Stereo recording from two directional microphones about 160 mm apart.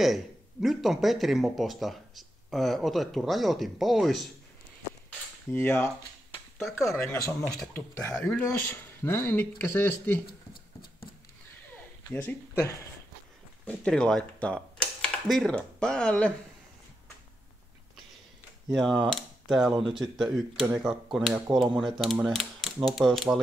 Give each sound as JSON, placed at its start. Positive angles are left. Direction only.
{"t": 0.0, "sound": "speech", "side_deg": 0}
{"t": 5.5, "sound": "speech", "side_deg": 10}
{"t": 6.9, "sound": "speech", "side_deg": 15}
{"t": 10.5, "sound": "horse", "side_deg": 70}
{"t": 12.1, "sound": "speech", "side_deg": 10}
{"t": 18.7, "sound": "speech", "side_deg": 0}
{"t": 21.3, "sound": "speech", "side_deg": -30}
{"t": 21.7, "sound": "speech", "side_deg": 0}